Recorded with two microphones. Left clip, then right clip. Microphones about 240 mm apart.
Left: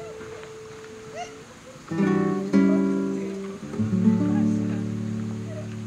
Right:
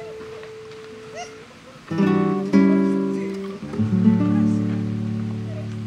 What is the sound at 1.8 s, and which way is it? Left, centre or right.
Music, right.